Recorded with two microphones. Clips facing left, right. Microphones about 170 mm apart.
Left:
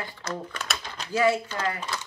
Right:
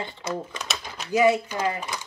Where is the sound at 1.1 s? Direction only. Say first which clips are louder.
Right 3 dB; 20° right (ahead or behind).